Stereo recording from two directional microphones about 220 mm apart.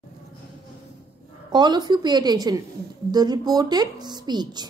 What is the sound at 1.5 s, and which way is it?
A woman's voice, 20° right (ahead or behind).